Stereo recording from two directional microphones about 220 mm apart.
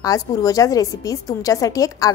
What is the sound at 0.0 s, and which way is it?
A woman's voice, 15° left (ahead or behind).